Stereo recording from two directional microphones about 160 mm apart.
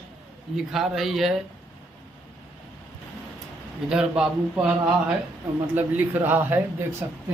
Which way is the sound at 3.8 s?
5° right (ahead or behind).